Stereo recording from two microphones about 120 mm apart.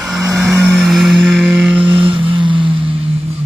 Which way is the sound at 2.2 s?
45° right (ahead or behind).